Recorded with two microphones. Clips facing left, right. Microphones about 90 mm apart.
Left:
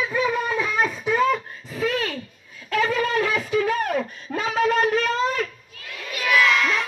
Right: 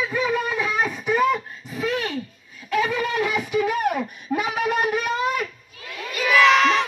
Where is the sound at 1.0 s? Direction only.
20° right (ahead or behind).